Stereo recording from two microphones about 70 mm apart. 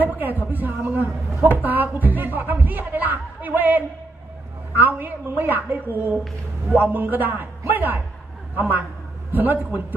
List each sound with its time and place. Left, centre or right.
0.0 s speech: right